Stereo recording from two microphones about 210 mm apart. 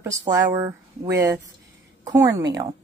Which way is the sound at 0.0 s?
15° right (ahead or behind).